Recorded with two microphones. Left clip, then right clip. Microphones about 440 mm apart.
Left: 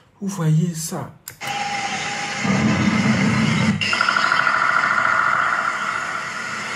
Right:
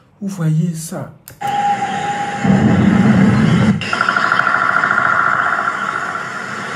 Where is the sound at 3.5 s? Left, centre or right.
Centre.